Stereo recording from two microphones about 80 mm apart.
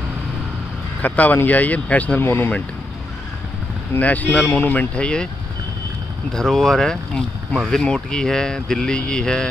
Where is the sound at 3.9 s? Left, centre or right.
Centre.